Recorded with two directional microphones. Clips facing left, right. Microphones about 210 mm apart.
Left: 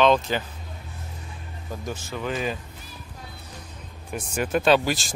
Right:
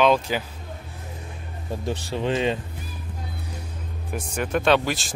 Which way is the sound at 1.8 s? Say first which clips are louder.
Right 5 dB; 30° right (ahead or behind).